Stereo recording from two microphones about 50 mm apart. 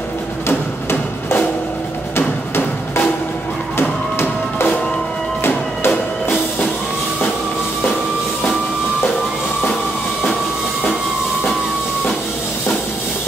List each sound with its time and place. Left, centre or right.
2.1 s music: left
5.4 s music: left